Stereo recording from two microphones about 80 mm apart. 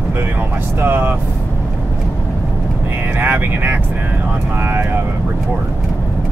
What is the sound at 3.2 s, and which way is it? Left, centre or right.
Speech, right.